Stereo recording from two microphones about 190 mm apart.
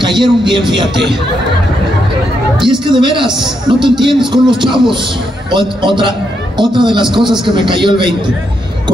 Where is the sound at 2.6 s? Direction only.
25° right (ahead or behind).